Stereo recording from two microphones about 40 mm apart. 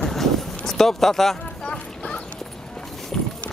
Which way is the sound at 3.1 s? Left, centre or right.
Centre.